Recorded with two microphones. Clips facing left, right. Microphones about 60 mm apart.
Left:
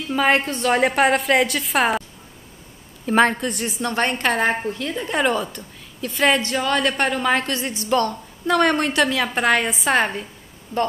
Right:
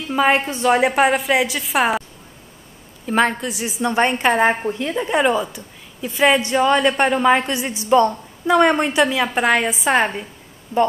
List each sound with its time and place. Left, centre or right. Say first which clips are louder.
0.1 s a woman's voice: right 2 dB; centre
3.1 s a woman's voice: left 1 dB; centre
3.9 s a woman's voice: right 4 dB; centre
4.8 s a woman's voice: right 4 dB; centre